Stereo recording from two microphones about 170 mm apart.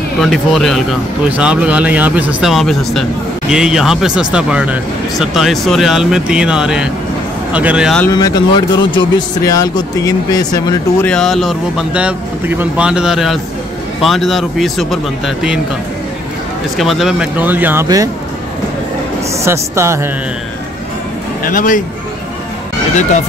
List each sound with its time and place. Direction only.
0.2 s speech: centre (ahead or behind)
8.1 s speech: 25° left (ahead or behind)
11.1 s speech: 5° left (ahead or behind)
16.7 s speech: centre (ahead or behind); by 18.1 s 20° right (ahead or behind)
19.4 s speech: 15° right (ahead or behind)
21.5 s speech: 50° left (ahead or behind)